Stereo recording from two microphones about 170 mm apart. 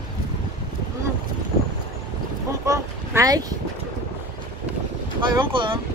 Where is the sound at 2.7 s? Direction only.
20° right (ahead or behind).